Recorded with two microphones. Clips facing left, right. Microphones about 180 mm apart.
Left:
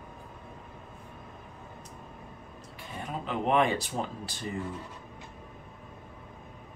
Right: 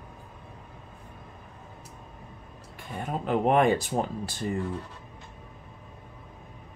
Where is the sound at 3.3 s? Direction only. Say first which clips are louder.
Right 4 dB; 50° right (ahead or behind).